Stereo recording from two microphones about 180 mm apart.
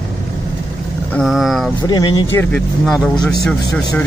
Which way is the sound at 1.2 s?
Centre (ahead or behind).